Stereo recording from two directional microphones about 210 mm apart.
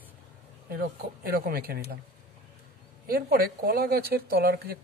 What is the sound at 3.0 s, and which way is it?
Speech, 45° right (ahead or behind).